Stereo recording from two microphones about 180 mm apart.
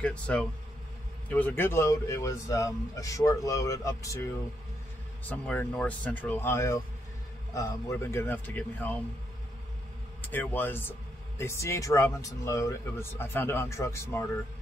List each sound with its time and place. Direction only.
0.0 s speech: 5° left (ahead or behind)
5.3 s speech: 10° left (ahead or behind)
10.2 s speech: 10° left (ahead or behind)